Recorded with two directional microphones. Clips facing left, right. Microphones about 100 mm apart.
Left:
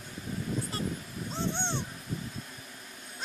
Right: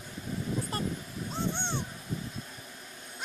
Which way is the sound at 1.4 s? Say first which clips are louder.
Even; 10° right (ahead or behind).